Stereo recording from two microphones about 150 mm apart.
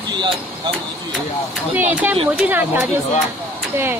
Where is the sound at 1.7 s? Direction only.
10° right (ahead or behind).